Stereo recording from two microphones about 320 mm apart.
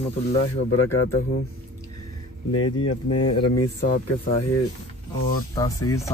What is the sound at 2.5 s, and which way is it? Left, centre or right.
Speech, left.